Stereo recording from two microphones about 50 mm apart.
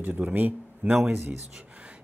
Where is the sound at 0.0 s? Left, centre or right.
Right.